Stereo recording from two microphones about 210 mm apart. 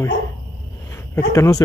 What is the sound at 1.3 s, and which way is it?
Speech, 15° left (ahead or behind).